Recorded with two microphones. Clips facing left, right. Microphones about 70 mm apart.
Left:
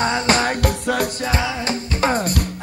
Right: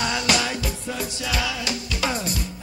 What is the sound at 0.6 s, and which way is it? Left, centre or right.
Music, left.